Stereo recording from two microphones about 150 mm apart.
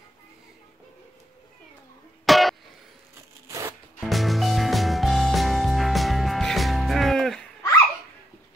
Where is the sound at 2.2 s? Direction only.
Centre (ahead or behind).